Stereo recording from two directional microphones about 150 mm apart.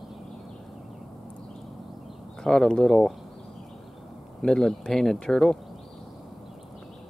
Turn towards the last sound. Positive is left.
turn(degrees=5)  # may be behind; listen again after turning